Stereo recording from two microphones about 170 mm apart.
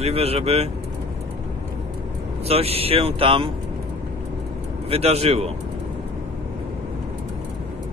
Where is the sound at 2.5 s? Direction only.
35° right (ahead or behind).